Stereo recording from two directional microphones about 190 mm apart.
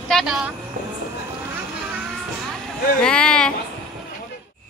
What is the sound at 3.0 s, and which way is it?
Speech, 5° left (ahead or behind).